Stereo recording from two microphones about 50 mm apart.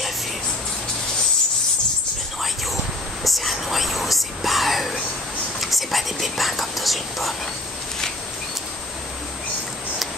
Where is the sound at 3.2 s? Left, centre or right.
Centre.